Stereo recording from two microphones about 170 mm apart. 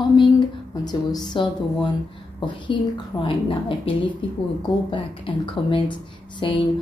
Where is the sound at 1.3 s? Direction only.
30° left (ahead or behind).